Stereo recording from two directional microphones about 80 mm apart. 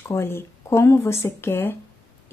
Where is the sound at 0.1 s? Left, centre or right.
Left.